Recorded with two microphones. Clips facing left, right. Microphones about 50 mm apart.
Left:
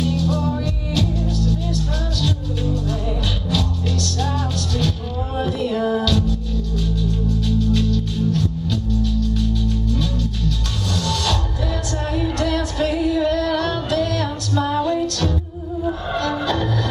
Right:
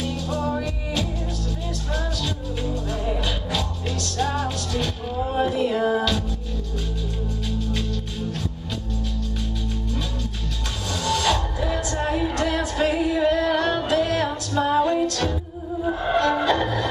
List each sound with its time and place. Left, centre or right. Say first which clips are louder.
0.0 s music: left 5 dB; centre
11.1 s music: right 4 dB; centre